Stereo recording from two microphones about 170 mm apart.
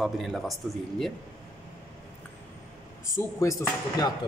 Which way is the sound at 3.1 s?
20° left (ahead or behind).